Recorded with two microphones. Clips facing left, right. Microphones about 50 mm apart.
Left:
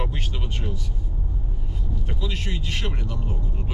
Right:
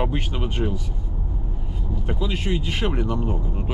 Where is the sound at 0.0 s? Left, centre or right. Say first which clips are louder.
Right 6 dB; centre.